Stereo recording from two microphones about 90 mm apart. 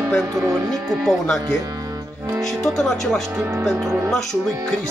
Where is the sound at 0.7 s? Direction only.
5° left (ahead or behind).